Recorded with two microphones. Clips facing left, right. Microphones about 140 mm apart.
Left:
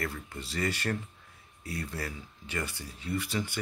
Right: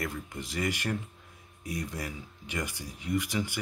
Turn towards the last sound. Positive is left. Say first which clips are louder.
# right 2 dB
turn(degrees=-15)  # may be behind; listen again after turning